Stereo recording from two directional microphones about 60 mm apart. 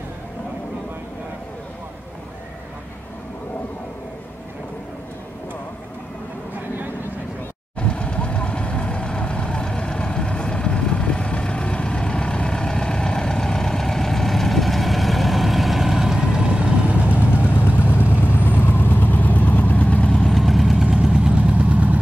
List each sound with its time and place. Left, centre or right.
7.9 s vehicle: centre; by 17.3 s right
17.4 s vehicle: left
17.9 s vehicle: right
18.2 s vehicle: left
20.2 s vehicle: centre
20.8 s vehicle: centre